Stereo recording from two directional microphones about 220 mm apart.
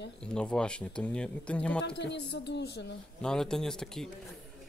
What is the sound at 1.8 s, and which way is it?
Speech, 50° left (ahead or behind).